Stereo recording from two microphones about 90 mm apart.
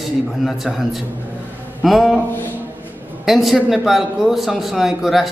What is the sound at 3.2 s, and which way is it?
A man's voice, centre (ahead or behind).